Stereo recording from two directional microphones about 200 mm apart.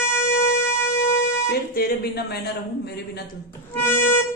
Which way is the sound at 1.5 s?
50° left (ahead or behind).